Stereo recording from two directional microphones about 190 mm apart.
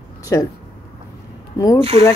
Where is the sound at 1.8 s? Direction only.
30° right (ahead or behind).